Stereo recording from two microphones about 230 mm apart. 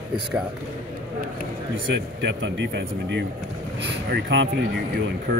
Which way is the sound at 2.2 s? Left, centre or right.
Right.